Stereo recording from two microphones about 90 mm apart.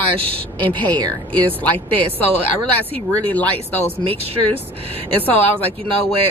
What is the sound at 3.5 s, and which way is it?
Speech, 90° right.